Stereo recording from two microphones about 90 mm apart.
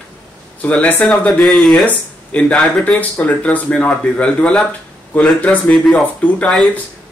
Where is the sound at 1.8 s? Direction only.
15° left (ahead or behind).